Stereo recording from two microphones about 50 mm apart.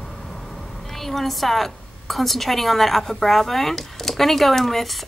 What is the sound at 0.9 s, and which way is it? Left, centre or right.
A woman's voice, centre.